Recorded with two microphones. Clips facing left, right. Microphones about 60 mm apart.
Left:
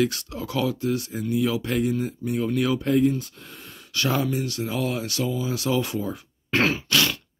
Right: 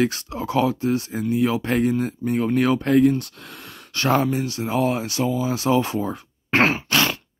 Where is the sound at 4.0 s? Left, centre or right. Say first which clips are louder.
Right 5 dB; right.